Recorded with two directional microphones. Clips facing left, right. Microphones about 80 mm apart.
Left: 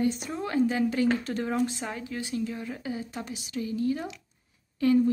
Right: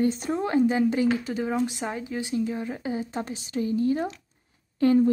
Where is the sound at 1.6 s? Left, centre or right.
Right.